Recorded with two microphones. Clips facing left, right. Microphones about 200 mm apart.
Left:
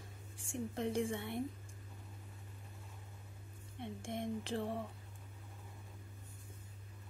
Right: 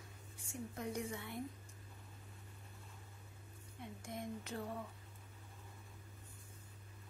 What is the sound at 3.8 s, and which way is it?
Speech, 25° left (ahead or behind).